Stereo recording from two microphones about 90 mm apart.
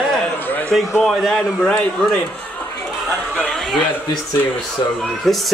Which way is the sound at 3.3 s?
10° left (ahead or behind).